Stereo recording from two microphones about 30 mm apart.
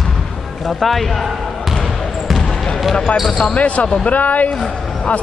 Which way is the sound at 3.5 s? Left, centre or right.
Left.